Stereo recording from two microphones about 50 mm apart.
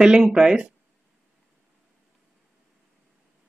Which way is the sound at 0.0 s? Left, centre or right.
Centre.